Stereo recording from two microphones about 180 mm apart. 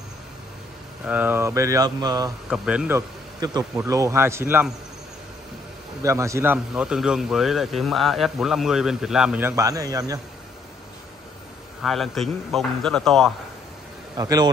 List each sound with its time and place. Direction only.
1.0 s speech: 10° right (ahead or behind)
2.5 s speech: 5° right (ahead or behind)
3.3 s speech: 20° right (ahead or behind)
6.0 s speech: 15° right (ahead or behind)
11.8 s speech: centre (ahead or behind)
14.1 s a man's voice: 20° right (ahead or behind)